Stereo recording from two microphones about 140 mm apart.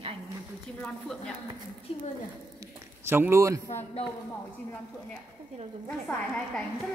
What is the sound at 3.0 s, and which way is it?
Speech, 15° right (ahead or behind).